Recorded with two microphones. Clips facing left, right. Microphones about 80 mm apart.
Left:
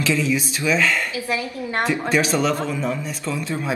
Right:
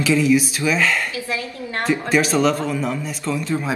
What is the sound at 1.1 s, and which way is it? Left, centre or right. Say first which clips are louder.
Speech: left 1 dB; left.